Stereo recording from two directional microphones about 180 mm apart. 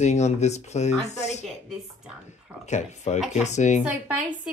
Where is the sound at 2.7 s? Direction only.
40° left (ahead or behind).